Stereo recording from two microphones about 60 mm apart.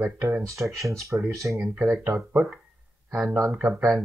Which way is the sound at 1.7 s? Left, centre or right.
Right.